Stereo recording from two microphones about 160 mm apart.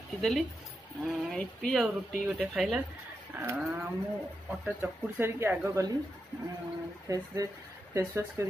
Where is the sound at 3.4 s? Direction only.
10° right (ahead or behind).